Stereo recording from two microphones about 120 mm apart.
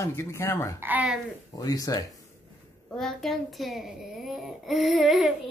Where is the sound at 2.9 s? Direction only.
Centre (ahead or behind).